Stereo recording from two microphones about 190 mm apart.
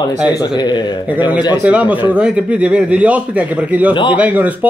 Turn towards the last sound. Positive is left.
turn(degrees=-10)  # may be behind; listen again after turning